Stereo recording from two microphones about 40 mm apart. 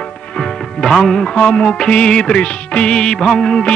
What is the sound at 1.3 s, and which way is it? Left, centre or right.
Music, left.